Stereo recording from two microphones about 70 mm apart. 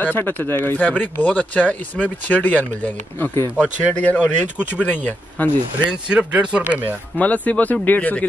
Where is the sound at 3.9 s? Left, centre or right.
Left.